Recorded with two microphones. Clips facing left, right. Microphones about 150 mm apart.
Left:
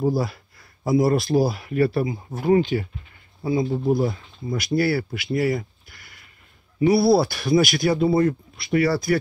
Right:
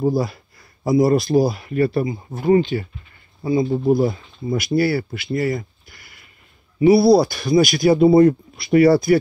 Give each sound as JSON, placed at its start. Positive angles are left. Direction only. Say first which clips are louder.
{"t": 0.0, "sound": "speech", "louder": "right 3 dB", "side_deg": 0}
{"t": 8.1, "sound": "speech", "louder": "right 7 dB", "side_deg": -30}